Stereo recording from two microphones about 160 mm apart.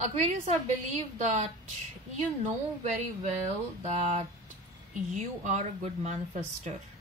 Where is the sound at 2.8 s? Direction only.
50° right (ahead or behind).